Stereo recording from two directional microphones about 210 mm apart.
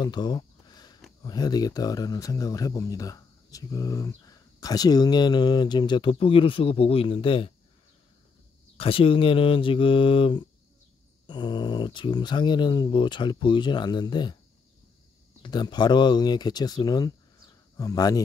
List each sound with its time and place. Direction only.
0.0 s a sound: 20° left (ahead or behind)
1.2 s speech: 20° left (ahead or behind)
8.7 s speech: 25° left (ahead or behind)
15.4 s speech: 20° left (ahead or behind)